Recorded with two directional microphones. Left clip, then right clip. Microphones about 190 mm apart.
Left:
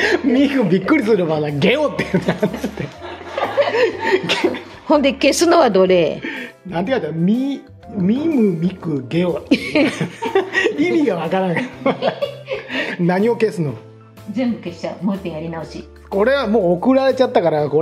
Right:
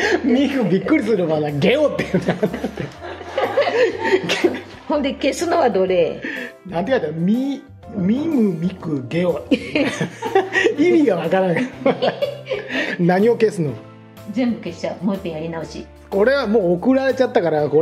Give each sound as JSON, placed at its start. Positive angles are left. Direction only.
{"t": 0.0, "sound": "speech", "side_deg": 15}
{"t": 3.7, "sound": "chuckle", "side_deg": 10}
{"t": 4.8, "sound": "a woman's voice", "side_deg": 60}
{"t": 6.2, "sound": "speech", "side_deg": 10}
{"t": 9.5, "sound": "speech", "side_deg": 50}
{"t": 9.8, "sound": "speech", "side_deg": 0}